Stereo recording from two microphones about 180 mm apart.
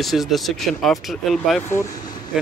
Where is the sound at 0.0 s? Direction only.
Centre (ahead or behind).